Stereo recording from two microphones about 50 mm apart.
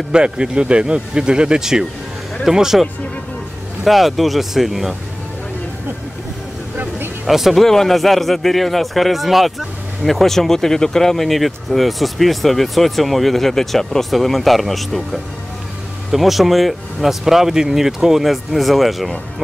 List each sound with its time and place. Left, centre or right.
0.1 s speech: centre
3.8 s a man's voice: centre
7.2 s a man's voice: centre
7.6 s a man's voice: centre
16.1 s a man's voice: centre